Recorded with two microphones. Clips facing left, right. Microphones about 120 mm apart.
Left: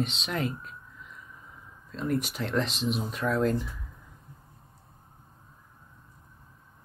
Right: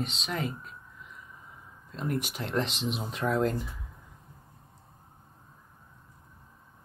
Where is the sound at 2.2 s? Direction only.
15° right (ahead or behind).